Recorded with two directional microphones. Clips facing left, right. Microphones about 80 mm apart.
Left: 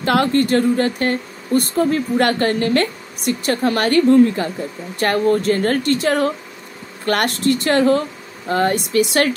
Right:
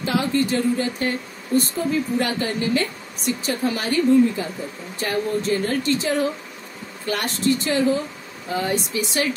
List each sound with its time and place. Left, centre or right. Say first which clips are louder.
0.0 s speech: left 5 dB; left